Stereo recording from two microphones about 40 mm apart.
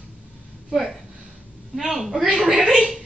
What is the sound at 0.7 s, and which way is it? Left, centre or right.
A woman's voice, centre.